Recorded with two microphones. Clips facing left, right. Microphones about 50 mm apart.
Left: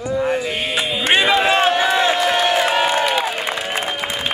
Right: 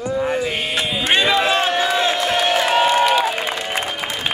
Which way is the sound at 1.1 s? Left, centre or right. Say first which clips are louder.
Left 2 dB; centre.